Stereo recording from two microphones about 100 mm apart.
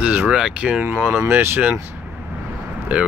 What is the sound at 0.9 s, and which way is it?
Speech, 20° right (ahead or behind).